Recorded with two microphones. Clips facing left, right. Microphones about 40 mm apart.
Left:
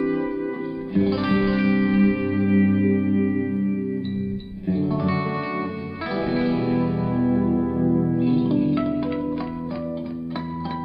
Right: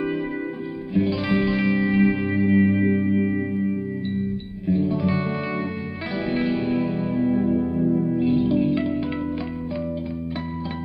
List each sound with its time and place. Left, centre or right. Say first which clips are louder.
0.9 s music: left 1 dB; centre
4.6 s music: right 1 dB; centre
7.6 s music: left 1 dB; centre
8.1 s music: even; centre